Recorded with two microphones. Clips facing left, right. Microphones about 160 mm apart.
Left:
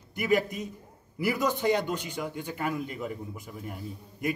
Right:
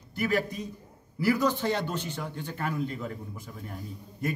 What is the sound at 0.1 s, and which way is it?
A man's voice, 15° left (ahead or behind).